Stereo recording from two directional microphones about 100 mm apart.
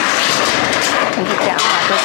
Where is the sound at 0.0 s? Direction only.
20° left (ahead or behind).